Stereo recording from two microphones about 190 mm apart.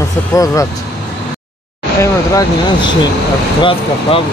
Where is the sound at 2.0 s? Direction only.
15° left (ahead or behind).